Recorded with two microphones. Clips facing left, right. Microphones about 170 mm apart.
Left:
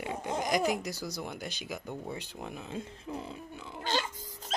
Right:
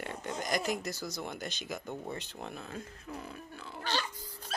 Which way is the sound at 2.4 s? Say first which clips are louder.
Left 3 dB; 15° left (ahead or behind).